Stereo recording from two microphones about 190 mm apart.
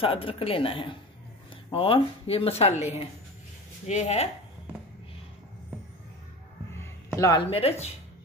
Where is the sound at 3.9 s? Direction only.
35° left (ahead or behind).